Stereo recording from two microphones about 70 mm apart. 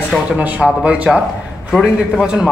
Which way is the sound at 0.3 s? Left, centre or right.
Centre.